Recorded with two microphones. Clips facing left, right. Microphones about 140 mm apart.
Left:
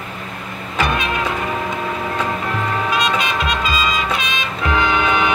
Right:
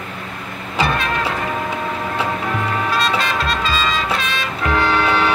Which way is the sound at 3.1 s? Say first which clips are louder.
Even; 15° left (ahead or behind).